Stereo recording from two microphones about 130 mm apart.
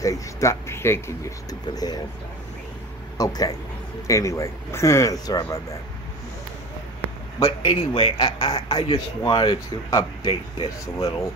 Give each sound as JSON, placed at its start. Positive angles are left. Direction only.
{"t": 0.0, "sound": "speech", "side_deg": 25}
{"t": 3.2, "sound": "speech", "side_deg": 30}
{"t": 7.3, "sound": "speech", "side_deg": 25}
{"t": 7.7, "sound": "speech", "side_deg": 40}